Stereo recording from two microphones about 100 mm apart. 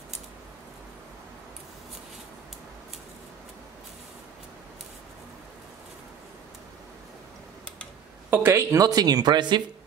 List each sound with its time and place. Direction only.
8.3 s speech: 20° right (ahead or behind)
8.7 s speech: 40° right (ahead or behind)